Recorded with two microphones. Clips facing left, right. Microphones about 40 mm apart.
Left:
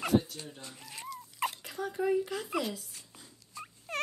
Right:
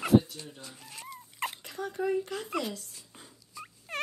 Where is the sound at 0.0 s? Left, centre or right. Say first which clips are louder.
Right 5 dB; centre.